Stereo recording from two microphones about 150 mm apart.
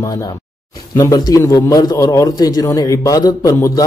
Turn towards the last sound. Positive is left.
turn(degrees=25)  # may be behind; listen again after turning